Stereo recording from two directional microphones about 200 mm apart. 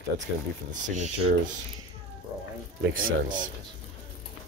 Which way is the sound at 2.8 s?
60° right (ahead or behind).